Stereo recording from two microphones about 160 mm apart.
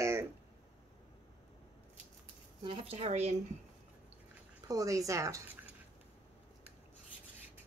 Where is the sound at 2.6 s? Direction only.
40° right (ahead or behind).